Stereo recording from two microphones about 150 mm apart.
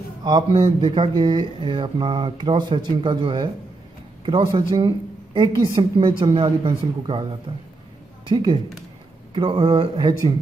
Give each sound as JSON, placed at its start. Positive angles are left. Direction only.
{"t": 0.2, "sound": "speech", "side_deg": -25}
{"t": 4.5, "sound": "speech", "side_deg": -30}